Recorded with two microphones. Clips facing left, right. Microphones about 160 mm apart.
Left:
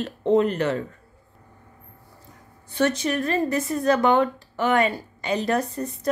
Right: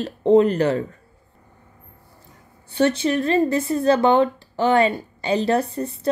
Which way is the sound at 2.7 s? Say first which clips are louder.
Right 3 dB; 30° right (ahead or behind).